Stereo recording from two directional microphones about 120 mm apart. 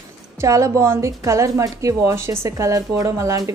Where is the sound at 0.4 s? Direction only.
25° right (ahead or behind).